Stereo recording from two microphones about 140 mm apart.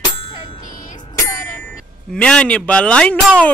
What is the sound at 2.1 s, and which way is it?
Music, 5° left (ahead or behind).